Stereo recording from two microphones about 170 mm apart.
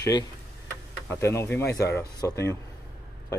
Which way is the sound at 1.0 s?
15° left (ahead or behind).